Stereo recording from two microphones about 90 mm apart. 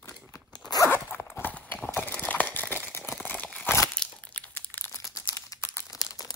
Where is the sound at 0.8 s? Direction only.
25° left (ahead or behind).